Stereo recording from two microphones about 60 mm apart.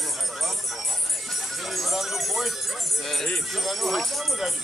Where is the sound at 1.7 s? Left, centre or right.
Centre.